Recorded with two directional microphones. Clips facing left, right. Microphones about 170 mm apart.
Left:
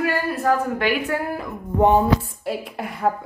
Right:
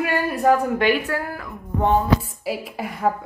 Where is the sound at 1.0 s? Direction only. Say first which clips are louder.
Left 2 dB; 20° left (ahead or behind).